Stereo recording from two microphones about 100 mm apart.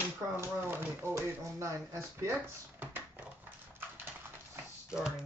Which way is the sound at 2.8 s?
20° right (ahead or behind).